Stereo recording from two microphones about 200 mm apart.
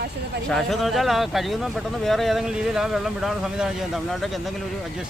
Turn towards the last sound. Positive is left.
turn(degrees=0)  # may be behind; listen again after turning